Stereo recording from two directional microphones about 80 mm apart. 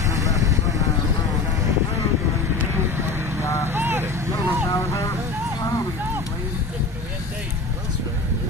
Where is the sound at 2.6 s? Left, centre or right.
Right.